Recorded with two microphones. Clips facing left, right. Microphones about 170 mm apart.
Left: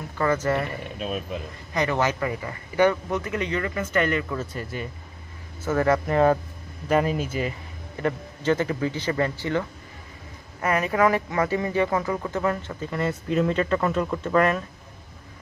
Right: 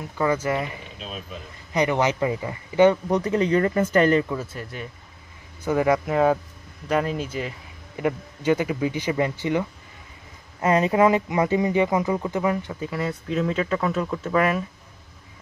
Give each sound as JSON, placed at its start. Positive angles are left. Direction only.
{"t": 0.2, "sound": "speech", "side_deg": -10}
{"t": 0.9, "sound": "speech", "side_deg": 55}
{"t": 1.7, "sound": "speech", "side_deg": -20}
{"t": 3.1, "sound": "speech", "side_deg": -35}
{"t": 4.3, "sound": "speech", "side_deg": -5}
{"t": 5.6, "sound": "speech", "side_deg": -15}
{"t": 7.9, "sound": "speech", "side_deg": -10}